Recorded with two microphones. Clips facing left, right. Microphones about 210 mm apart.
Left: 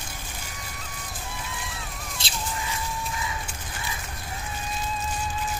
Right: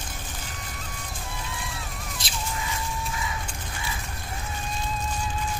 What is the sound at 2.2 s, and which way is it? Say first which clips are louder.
Bird: even; 25° left (ahead or behind).